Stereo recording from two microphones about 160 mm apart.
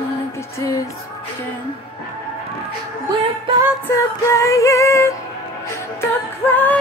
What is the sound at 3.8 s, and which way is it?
Music, 20° left (ahead or behind).